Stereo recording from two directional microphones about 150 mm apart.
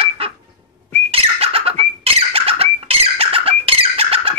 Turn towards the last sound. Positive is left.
turn(degrees=-40)  # may be behind; listen again after turning